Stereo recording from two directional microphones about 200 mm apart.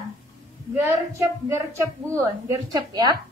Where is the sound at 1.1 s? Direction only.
15° right (ahead or behind).